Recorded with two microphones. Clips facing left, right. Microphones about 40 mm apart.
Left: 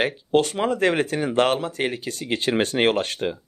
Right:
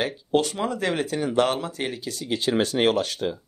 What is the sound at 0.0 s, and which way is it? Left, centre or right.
Speech, left.